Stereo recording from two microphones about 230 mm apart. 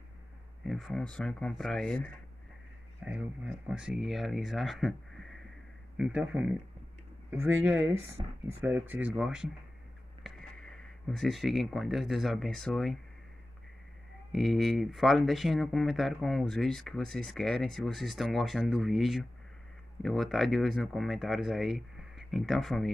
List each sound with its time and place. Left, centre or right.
0.7 s speech: centre
8.2 s speech: right
8.5 s speech: centre
14.3 s speech: centre